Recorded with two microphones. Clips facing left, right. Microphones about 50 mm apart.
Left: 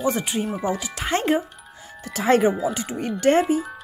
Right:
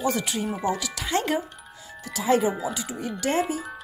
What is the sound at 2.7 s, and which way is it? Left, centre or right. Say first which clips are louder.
Speech: left 4 dB; left.